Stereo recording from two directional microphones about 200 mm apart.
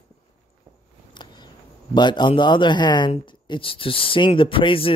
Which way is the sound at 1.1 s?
20° left (ahead or behind).